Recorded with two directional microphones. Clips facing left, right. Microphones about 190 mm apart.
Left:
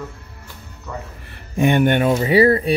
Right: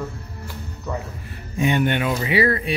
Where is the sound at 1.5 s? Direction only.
55° left (ahead or behind); by 2.7 s 35° left (ahead or behind).